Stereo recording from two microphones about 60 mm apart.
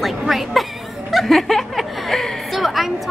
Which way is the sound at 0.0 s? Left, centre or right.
Centre.